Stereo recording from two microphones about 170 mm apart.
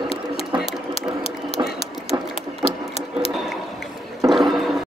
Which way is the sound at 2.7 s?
35° left (ahead or behind).